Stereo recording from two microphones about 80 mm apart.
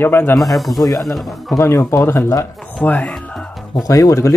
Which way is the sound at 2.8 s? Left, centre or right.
Centre.